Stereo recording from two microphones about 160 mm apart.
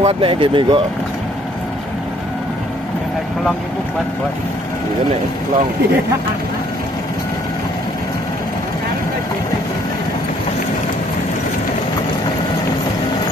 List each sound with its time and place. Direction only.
0.0 s speech: 35° right (ahead or behind)